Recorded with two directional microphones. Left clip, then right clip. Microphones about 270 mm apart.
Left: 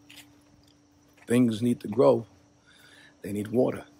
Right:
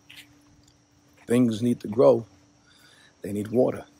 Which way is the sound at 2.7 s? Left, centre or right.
Centre.